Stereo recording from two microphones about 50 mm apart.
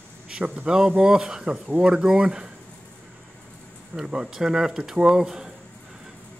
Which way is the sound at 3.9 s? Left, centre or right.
Centre.